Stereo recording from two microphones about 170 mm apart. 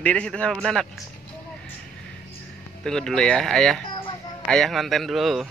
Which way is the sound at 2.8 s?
5° left (ahead or behind).